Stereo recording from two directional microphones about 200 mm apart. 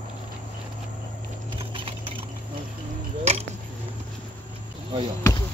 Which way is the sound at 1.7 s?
25° right (ahead or behind).